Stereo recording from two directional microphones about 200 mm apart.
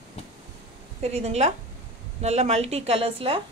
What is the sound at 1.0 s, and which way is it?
A woman's voice, 30° right (ahead or behind).